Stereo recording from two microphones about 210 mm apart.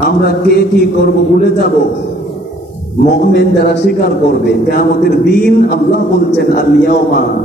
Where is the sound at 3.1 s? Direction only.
50° left (ahead or behind).